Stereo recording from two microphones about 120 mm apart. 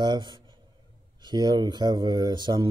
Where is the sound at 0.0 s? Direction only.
40° right (ahead or behind).